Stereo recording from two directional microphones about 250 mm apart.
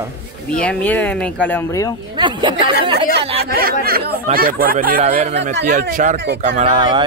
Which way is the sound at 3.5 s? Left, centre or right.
Right.